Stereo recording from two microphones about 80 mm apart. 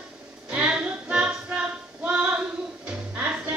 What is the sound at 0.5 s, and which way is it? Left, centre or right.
Music, centre.